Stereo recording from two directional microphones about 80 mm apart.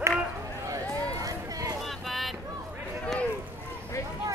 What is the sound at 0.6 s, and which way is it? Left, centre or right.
Vehicle, right.